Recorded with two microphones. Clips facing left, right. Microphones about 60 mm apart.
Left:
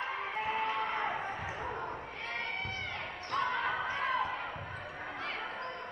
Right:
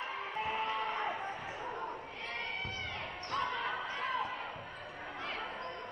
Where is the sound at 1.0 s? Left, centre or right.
Left.